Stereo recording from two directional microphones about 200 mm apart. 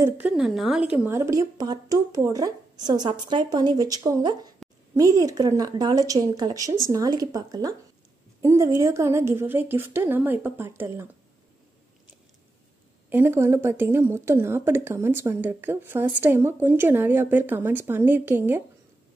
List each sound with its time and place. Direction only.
0.0 s a woman's voice: 5° right (ahead or behind)
13.1 s a woman's voice: 10° right (ahead or behind)